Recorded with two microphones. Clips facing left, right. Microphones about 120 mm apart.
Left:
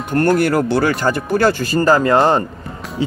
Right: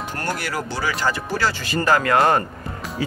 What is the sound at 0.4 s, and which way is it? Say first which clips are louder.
Speech: left 11 dB; 55° left (ahead or behind).